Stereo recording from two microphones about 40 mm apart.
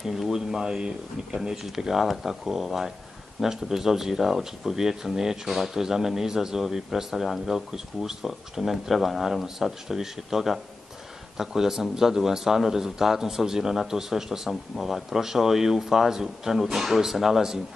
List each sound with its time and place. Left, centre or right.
0.0 s speech: centre